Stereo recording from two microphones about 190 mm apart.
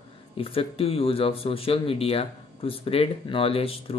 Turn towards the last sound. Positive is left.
turn(degrees=30)  # may be behind; listen again after turning